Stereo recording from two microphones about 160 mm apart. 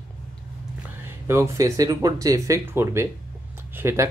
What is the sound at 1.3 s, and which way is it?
Speech, 20° right (ahead or behind).